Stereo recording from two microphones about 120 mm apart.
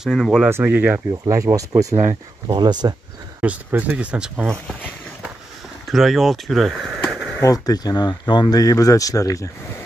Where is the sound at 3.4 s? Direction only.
15° right (ahead or behind).